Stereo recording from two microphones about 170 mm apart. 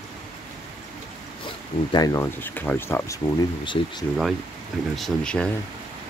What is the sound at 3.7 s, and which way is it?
Speech, 30° left (ahead or behind).